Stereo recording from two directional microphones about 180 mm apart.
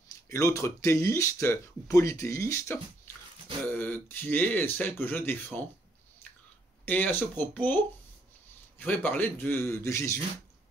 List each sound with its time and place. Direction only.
0.1 s speech: 15° left (ahead or behind)
6.9 s speech: 10° left (ahead or behind)